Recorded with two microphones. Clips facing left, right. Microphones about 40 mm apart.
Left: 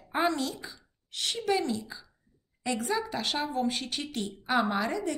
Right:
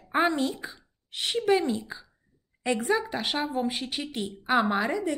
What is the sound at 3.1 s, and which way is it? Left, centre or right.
A woman's voice, centre.